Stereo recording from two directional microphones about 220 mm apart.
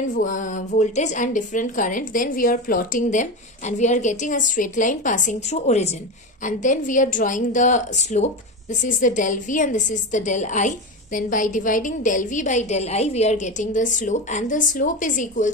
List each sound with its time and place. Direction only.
0.2 s a woman's voice: 35° left (ahead or behind)